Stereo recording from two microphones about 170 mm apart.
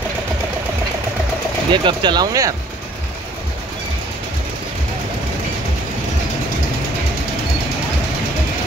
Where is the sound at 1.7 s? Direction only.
25° right (ahead or behind).